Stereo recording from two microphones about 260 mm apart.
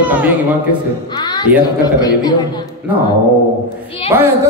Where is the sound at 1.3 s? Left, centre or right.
Centre.